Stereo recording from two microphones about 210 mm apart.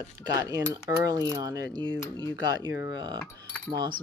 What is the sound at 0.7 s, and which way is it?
Mechanisms, 15° right (ahead or behind).